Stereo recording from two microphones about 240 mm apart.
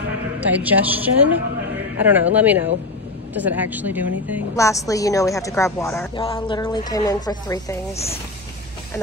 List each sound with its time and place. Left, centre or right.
0.4 s a woman's voice: centre
4.6 s a woman's voice: centre
7.9 s speech: left